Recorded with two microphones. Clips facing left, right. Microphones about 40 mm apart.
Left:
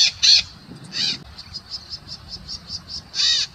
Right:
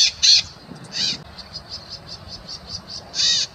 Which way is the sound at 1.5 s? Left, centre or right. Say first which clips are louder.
Left 2 dB; right.